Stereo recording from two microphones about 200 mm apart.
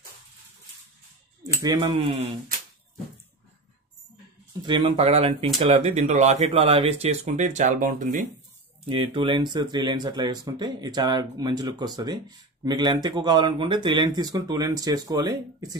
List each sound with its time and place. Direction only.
1.6 s speech: 20° right (ahead or behind)
4.6 s speech: 25° right (ahead or behind); by 8.3 s 40° right (ahead or behind)
8.8 s speech: 25° right (ahead or behind)